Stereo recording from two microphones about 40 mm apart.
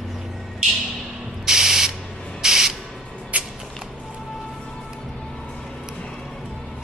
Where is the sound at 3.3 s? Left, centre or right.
Right.